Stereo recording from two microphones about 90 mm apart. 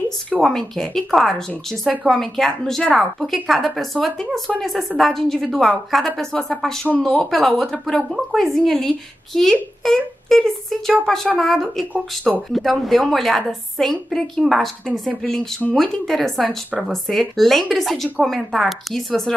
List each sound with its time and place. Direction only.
0.4 s speech: 5° left (ahead or behind)